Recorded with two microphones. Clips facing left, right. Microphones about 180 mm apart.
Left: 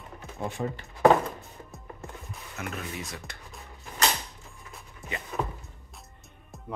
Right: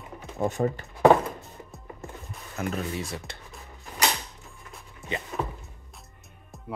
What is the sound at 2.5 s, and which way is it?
Speech, 35° right (ahead or behind).